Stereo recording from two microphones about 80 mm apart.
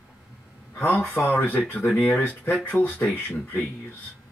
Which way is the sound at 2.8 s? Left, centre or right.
Centre.